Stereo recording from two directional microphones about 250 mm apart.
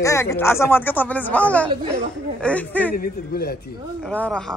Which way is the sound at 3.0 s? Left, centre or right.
Left.